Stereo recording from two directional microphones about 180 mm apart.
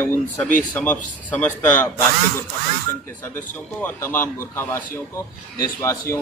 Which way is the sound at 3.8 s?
10° left (ahead or behind).